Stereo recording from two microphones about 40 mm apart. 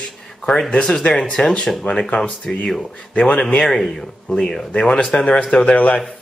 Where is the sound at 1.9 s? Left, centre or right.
Left.